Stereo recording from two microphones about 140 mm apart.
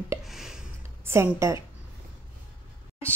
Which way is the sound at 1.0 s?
20° right (ahead or behind).